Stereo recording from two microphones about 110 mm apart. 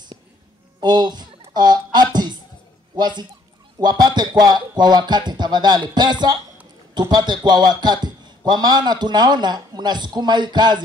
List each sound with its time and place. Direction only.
0.7 s a man's voice: 40° right (ahead or behind)